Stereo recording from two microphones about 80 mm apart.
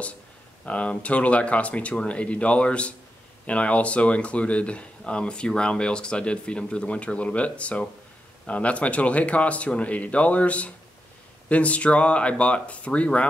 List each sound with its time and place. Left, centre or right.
0.7 s speech: centre